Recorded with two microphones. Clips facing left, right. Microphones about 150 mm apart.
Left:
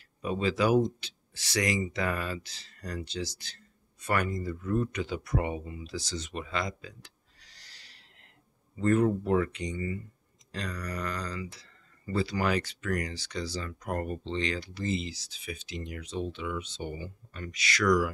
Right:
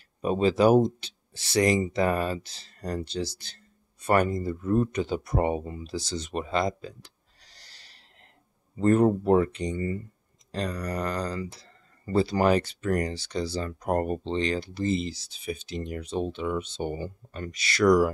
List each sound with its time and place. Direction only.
0.2 s speech: 35° right (ahead or behind)
5.9 s speech: 30° right (ahead or behind)
8.7 s speech: 35° right (ahead or behind)
15.8 s speech: 45° right (ahead or behind); by 18.1 s 30° right (ahead or behind)